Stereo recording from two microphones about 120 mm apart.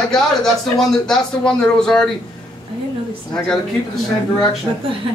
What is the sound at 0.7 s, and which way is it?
A man's voice, 5° left (ahead or behind).